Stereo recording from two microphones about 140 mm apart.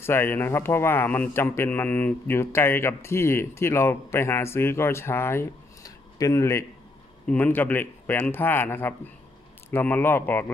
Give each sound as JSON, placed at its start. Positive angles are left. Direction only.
{"t": 0.0, "sound": "a man's voice", "side_deg": 15}